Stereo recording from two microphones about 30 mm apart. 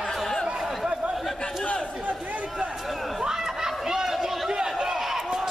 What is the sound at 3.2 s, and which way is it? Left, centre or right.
Run, centre.